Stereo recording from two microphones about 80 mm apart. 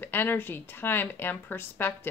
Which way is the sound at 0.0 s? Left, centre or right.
Left.